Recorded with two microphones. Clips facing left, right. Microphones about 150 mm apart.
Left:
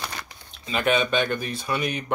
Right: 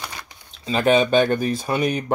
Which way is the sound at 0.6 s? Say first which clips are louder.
Right 5 dB; 35° right (ahead or behind).